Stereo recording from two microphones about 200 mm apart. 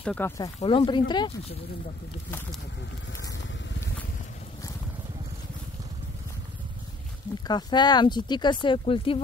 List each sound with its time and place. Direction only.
0.0 s speech: 5° left (ahead or behind)
0.4 s speech: 25° left (ahead or behind)
7.4 s speech: 20° left (ahead or behind)